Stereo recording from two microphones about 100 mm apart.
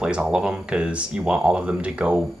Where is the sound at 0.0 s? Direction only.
10° right (ahead or behind).